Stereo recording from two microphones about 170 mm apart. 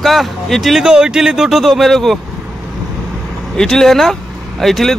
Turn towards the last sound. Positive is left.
turn(degrees=0)  # may be behind; listen again after turning